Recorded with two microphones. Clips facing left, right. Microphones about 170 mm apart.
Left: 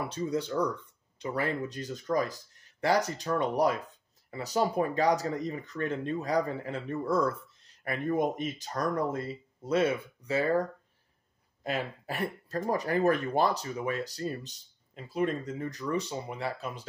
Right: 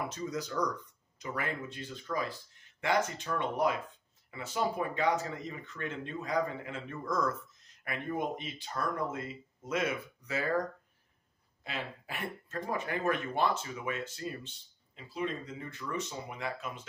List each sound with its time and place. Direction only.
0.1 s speech: 30° left (ahead or behind)
11.6 s speech: 40° left (ahead or behind)